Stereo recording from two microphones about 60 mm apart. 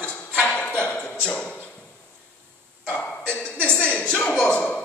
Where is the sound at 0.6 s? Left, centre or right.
Centre.